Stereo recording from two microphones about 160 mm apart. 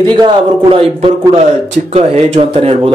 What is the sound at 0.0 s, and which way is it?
Speech, 30° right (ahead or behind).